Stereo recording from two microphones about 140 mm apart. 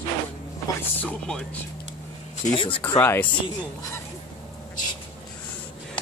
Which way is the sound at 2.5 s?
40° left (ahead or behind).